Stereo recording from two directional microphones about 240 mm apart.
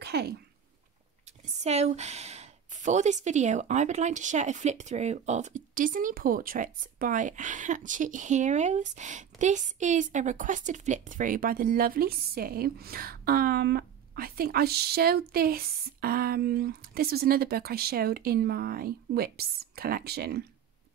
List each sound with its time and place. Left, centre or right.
0.0 s sneeze: right
1.4 s speech: right